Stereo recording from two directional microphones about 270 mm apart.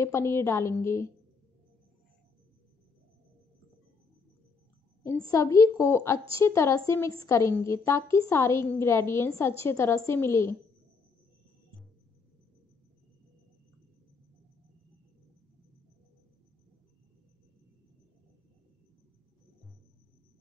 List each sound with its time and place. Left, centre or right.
0.0 s a woman's voice: centre
5.3 s a woman's voice: centre